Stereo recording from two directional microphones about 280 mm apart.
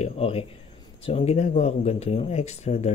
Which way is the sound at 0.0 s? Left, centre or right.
Left.